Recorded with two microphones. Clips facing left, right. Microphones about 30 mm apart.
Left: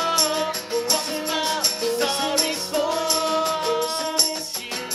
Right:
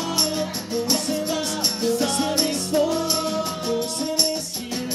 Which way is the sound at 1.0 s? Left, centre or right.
Left.